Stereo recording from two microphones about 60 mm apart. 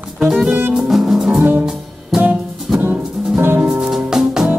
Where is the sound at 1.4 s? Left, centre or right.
Right.